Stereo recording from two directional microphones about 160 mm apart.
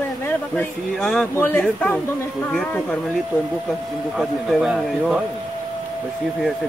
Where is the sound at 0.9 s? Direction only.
5° left (ahead or behind).